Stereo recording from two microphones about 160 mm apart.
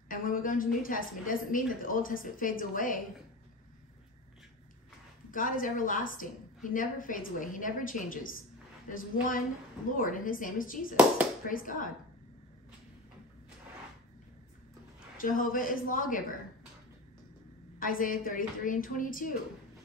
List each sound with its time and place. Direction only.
0.1 s a woman's voice: 60° left (ahead or behind)
5.3 s a woman's voice: 60° left (ahead or behind)
15.1 s a woman's voice: 60° left (ahead or behind)
17.7 s a woman's voice: 60° left (ahead or behind)